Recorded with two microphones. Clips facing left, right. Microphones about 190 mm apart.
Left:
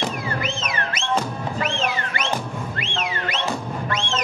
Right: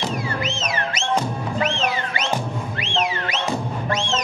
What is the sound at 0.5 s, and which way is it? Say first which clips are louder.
Music: right 2 dB; 55° left (ahead or behind).